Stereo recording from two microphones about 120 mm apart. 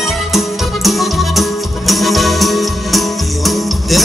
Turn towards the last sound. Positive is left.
turn(degrees=0)  # may be behind; listen again after turning